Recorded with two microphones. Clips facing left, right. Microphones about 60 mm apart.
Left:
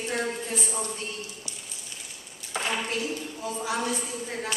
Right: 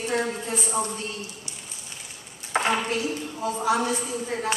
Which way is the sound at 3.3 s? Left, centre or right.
Right.